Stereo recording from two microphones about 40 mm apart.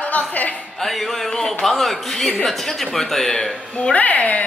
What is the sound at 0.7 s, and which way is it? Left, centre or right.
Speech, centre.